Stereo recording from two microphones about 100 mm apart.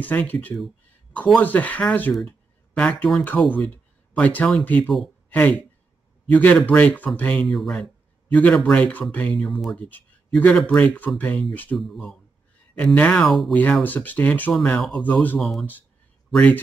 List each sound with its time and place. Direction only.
0.0 s speech: 15° left (ahead or behind)
5.3 s speech: 15° left (ahead or behind)
8.3 s speech: 15° left (ahead or behind)
11.7 s speech: centre (ahead or behind)
12.7 s speech: 10° left (ahead or behind)
13.5 s speech: 15° left (ahead or behind)